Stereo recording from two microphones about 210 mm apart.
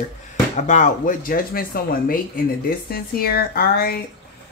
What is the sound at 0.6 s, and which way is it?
Speech, 35° left (ahead or behind).